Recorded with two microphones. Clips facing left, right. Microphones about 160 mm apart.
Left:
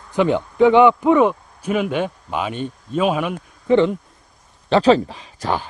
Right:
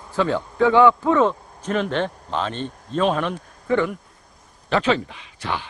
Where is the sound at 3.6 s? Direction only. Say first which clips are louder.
Left 6 dB; 20° left (ahead or behind).